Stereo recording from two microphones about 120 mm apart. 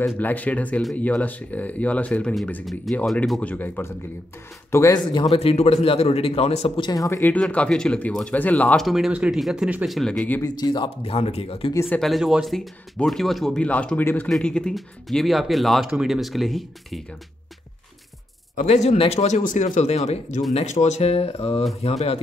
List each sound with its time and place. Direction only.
0.0 s speech: 15° left (ahead or behind)
3.3 s speech: 10° left (ahead or behind)
5.2 s a man's voice: 55° left (ahead or behind)
6.8 s speech: 30° left (ahead or behind)
7.3 s speech: 10° left (ahead or behind)
8.8 s speech: 5° right (ahead or behind)
10.4 s speech: 35° left (ahead or behind)
11.1 s a man's voice: 55° left (ahead or behind)
11.7 s speech: 20° left (ahead or behind)
12.0 s speech: centre (ahead or behind)
18.6 s a man's voice: 70° left (ahead or behind)